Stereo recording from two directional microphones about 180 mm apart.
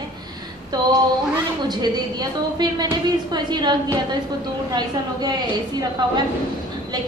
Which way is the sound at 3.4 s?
25° right (ahead or behind).